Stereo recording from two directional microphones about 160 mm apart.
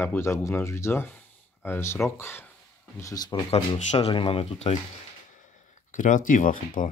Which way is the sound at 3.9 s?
35° left (ahead or behind).